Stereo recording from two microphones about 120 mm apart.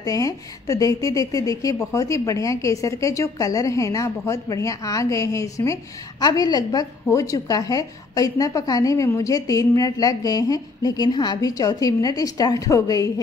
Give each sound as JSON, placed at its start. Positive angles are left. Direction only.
{"t": 0.0, "sound": "a woman's voice", "side_deg": 30}